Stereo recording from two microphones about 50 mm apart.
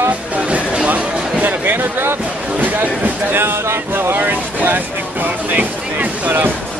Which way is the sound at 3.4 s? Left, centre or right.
Right.